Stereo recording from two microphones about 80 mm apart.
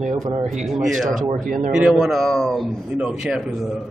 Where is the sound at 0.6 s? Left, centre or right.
Centre.